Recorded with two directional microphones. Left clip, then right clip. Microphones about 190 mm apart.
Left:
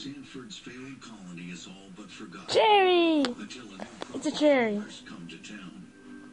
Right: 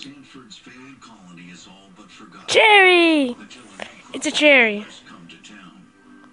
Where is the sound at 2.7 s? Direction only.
45° right (ahead or behind).